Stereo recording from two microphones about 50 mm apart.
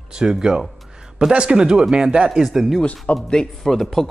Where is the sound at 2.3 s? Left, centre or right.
Centre.